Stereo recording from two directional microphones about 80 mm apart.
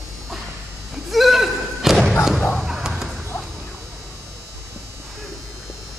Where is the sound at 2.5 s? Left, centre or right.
Centre.